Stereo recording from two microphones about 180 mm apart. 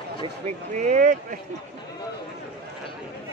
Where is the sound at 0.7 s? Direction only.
45° right (ahead or behind).